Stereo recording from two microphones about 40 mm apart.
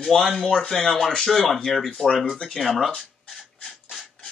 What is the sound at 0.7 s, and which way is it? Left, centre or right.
Speech, centre.